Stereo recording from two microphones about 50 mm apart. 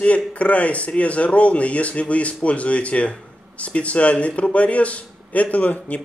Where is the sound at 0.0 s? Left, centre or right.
Left.